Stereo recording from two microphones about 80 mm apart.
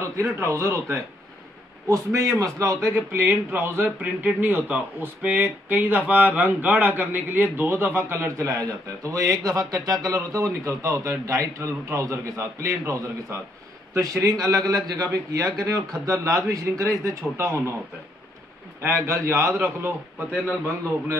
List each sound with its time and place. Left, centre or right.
0.0 s a man's voice: right
18.8 s a man's voice: right